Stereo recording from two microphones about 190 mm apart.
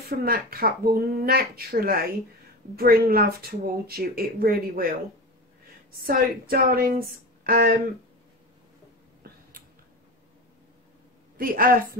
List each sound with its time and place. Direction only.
0.2 s speech: 50° right (ahead or behind)
6.0 s speech: 50° right (ahead or behind)
9.2 s a sound: 55° right (ahead or behind)
11.3 s speech: 50° right (ahead or behind)